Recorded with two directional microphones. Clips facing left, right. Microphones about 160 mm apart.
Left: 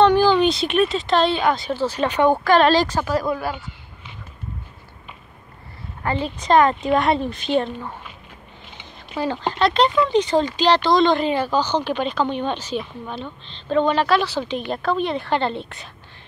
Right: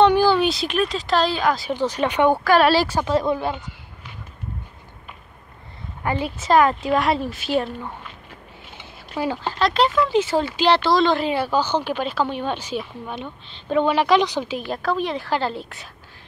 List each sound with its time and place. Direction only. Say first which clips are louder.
0.0 s speech: left 1 dB; 10° right (ahead or behind)
1.7 s a woman's voice: even; 15° right (ahead or behind)
3.1 s speech: right 2 dB; 25° right (ahead or behind)
6.0 s a woman's voice: left 1 dB; 10° right (ahead or behind)
9.2 s a woman's voice: even; 10° right (ahead or behind)
9.6 s a woman's voice: left 1 dB; centre (ahead or behind)